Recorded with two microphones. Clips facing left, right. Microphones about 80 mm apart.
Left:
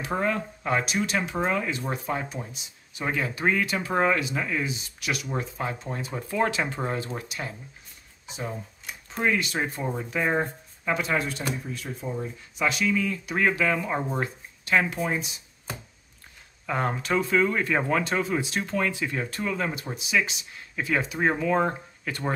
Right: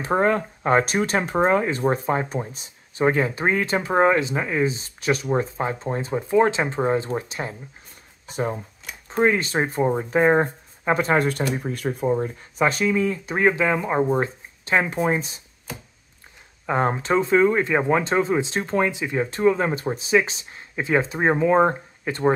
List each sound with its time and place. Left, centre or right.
0.0 s speech: right
8.3 s a sound: right
9.2 s speech: right
16.6 s speech: right